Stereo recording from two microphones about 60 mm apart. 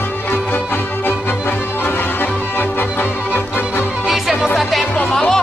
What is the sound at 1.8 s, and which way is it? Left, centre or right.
Music, left.